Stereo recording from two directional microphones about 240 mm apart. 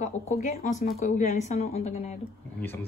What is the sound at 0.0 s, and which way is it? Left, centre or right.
Speech, left.